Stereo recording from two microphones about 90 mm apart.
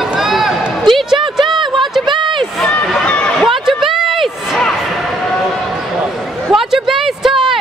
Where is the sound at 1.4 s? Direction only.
60° right (ahead or behind).